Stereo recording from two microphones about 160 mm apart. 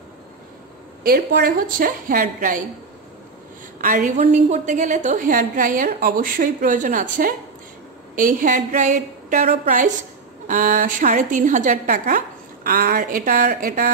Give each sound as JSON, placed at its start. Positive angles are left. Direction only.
{"t": 1.0, "sound": "a woman's voice", "side_deg": -70}
{"t": 3.8, "sound": "a woman's voice", "side_deg": -60}
{"t": 4.2, "sound": "a woman's voice", "side_deg": -45}